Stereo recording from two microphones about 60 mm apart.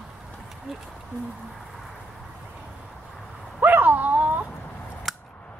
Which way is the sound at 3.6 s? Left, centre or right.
Right.